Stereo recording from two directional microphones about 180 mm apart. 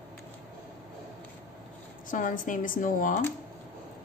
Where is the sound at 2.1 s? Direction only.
45° left (ahead or behind).